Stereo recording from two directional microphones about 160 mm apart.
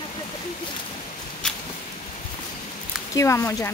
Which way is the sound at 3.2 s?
20° left (ahead or behind).